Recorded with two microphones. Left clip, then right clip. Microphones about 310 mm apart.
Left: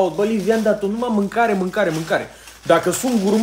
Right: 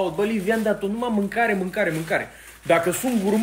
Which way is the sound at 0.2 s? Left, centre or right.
Centre.